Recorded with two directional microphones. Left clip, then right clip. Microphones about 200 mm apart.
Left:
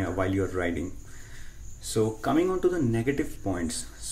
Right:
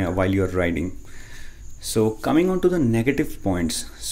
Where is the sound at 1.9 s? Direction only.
35° right (ahead or behind).